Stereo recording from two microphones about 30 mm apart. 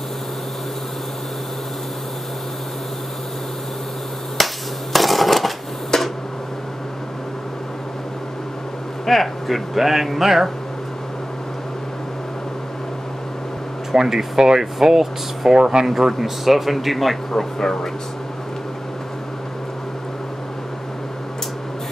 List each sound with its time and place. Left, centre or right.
4.4 s hammer: centre
4.9 s a sound: centre
5.9 s a sound: centre
9.0 s speech: centre
9.8 s speech: centre
13.9 s speech: centre
15.6 s speech: right
16.0 s speech: centre
17.4 s speech: centre